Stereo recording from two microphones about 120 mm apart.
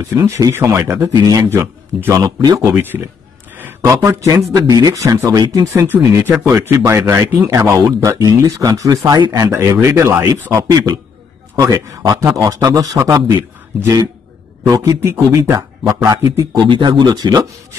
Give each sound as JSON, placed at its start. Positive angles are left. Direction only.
{"t": 0.0, "sound": "speech", "side_deg": -25}
{"t": 1.1, "sound": "speech", "side_deg": -35}
{"t": 16.6, "sound": "speech", "side_deg": -40}